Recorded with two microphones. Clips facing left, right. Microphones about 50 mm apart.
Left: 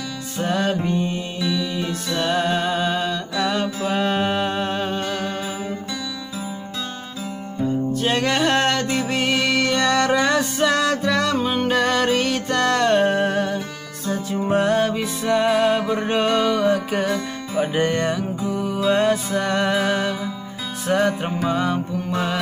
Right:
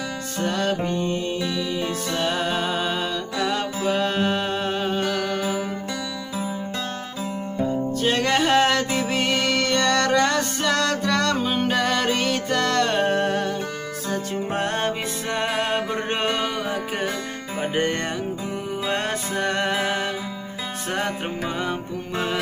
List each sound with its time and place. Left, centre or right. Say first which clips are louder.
0.4 s music: left 2 dB; centre
7.9 s music: right 1 dB; centre
14.6 s music: left 5 dB; right; by 17.1 s centre
17.9 s music: left 4 dB; right
21.4 s music: left 5 dB; centre